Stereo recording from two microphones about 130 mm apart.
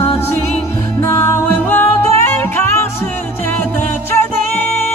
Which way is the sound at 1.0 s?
20° left (ahead or behind).